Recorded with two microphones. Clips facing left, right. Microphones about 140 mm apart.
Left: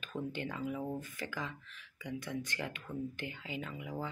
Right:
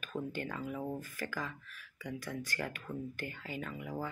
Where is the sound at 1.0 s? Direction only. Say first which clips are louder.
Right 1 dB; 20° left (ahead or behind).